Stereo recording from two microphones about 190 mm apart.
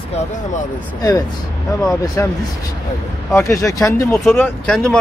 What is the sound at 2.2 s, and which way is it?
Speech, 10° left (ahead or behind).